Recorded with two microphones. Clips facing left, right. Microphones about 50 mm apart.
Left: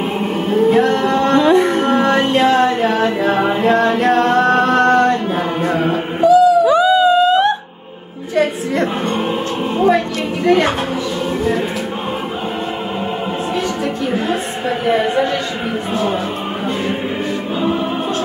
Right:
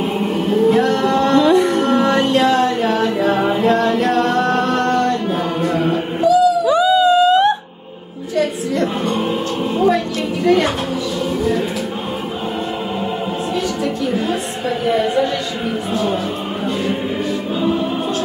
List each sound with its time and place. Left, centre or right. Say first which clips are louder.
0.5 s music: left 2 dB; centre
6.7 s wail: left 1 dB; centre
8.4 s music: left 2 dB; centre
9.8 s a sound: left 2 dB; centre
14.1 s chatter: left 1 dB; centre